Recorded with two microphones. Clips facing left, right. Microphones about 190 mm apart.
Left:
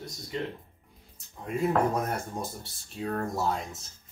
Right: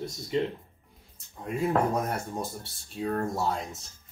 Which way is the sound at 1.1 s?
Centre (ahead or behind).